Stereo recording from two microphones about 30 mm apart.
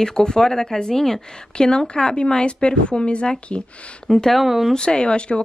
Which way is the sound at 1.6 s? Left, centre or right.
Left.